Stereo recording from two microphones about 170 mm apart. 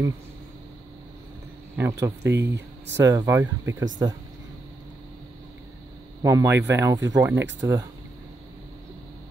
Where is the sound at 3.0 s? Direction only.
20° right (ahead or behind).